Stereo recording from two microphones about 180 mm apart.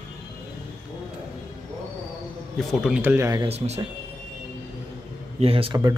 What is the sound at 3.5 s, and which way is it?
Speech, 35° right (ahead or behind).